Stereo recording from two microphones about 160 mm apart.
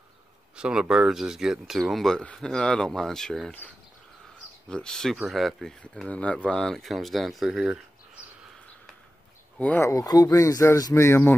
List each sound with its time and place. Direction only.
0.6 s speech: 5° right (ahead or behind)
9.6 s speech: 10° left (ahead or behind)